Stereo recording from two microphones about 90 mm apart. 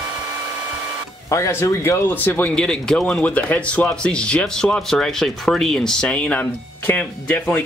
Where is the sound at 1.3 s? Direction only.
30° left (ahead or behind).